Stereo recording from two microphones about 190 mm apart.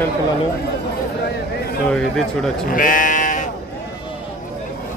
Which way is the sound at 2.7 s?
45° left (ahead or behind).